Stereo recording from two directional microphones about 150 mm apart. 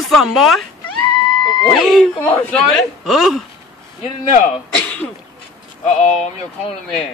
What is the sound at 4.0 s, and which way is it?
Speech, 55° left (ahead or behind).